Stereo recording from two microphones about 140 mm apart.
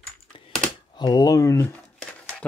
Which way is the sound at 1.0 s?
30° left (ahead or behind).